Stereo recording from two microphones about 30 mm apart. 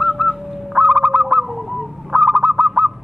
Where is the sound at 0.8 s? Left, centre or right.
Right.